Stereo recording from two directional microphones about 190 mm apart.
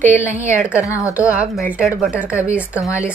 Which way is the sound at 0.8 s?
15° left (ahead or behind).